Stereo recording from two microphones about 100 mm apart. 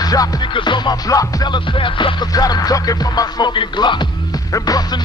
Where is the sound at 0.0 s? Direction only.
40° left (ahead or behind); by 2.2 s 55° left (ahead or behind).